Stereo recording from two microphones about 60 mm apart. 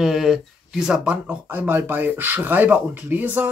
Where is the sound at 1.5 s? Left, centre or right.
Right.